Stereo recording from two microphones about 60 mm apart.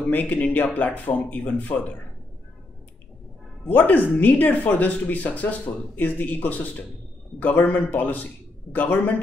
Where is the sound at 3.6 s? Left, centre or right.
Left.